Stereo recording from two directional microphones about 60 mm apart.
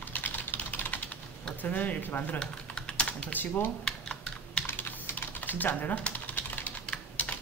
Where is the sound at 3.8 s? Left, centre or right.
Centre.